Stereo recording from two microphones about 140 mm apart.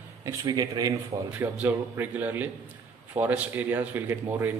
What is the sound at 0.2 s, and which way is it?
Speech, 25° right (ahead or behind).